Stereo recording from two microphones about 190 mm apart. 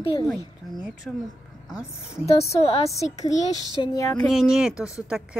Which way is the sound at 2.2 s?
30° left (ahead or behind).